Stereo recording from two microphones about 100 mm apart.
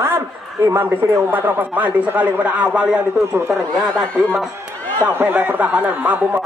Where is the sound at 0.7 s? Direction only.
20° right (ahead or behind).